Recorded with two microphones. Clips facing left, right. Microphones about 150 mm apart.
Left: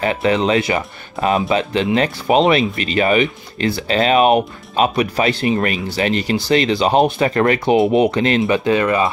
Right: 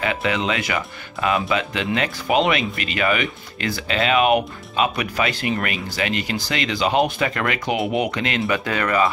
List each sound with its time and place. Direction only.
0.0 s speech: 35° left (ahead or behind)